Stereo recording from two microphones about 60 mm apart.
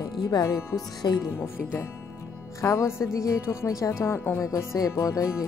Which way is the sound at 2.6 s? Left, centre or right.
Left.